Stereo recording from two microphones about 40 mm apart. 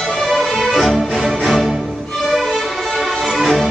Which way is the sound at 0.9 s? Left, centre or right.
Centre.